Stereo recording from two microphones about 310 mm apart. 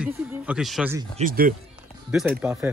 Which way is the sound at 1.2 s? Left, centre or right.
Right.